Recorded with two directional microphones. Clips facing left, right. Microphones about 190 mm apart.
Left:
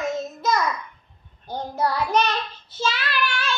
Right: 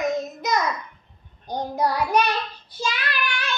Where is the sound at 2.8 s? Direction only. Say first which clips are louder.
Left 2 dB; 15° right (ahead or behind).